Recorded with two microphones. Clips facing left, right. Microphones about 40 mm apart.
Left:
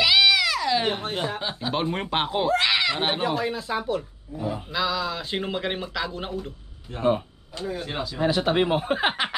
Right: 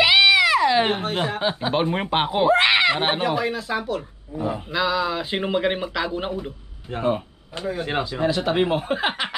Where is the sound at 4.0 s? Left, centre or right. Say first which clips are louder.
Right 4 dB; right.